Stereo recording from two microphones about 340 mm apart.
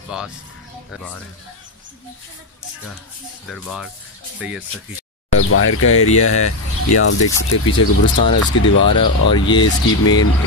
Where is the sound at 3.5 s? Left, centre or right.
Centre.